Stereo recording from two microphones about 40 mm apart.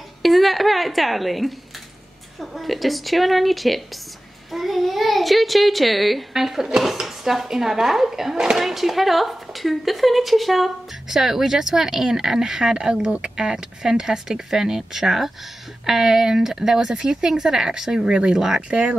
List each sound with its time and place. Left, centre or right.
0.2 s a sound: centre
2.4 s a child's voice: centre
18.7 s speech: right